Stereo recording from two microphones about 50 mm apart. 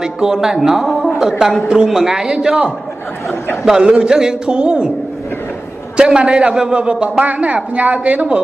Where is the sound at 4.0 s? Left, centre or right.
Centre.